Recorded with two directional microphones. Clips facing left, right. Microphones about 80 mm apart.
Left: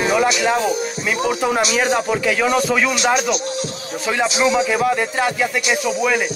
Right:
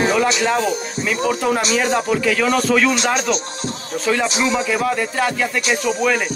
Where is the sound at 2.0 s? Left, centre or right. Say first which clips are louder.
Even; centre.